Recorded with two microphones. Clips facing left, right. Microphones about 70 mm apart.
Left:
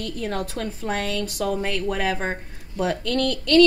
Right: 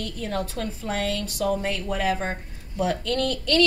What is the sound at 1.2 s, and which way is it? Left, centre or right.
Speech, right.